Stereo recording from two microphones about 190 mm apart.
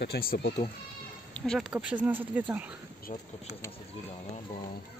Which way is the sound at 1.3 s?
5° left (ahead or behind).